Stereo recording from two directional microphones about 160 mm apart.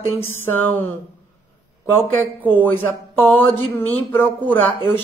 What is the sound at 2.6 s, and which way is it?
Speech, 10° left (ahead or behind).